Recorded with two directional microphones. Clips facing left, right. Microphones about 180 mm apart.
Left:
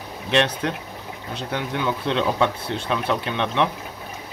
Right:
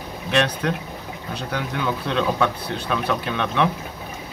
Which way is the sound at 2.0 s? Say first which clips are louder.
Even; 20° left (ahead or behind).